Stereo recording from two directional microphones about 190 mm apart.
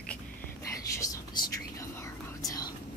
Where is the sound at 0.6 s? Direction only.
20° left (ahead or behind).